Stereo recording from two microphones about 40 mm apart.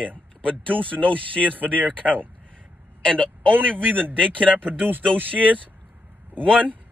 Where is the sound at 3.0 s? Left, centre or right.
Left.